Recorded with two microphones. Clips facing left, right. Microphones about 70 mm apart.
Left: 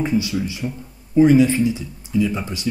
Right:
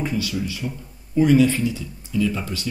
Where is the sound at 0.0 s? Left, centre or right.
Left.